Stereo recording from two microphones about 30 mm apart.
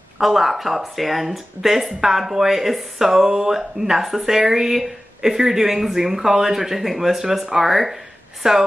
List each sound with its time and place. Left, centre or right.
0.2 s speech: centre
7.4 s speech: centre
7.7 s a woman's voice: centre